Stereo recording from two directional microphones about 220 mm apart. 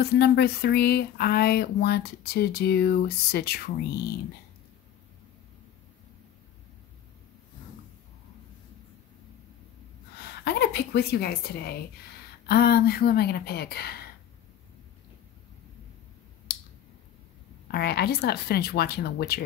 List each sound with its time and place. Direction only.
0.0 s speech: 45° left (ahead or behind)
10.2 s speech: 45° left (ahead or behind)
17.6 s speech: 45° left (ahead or behind)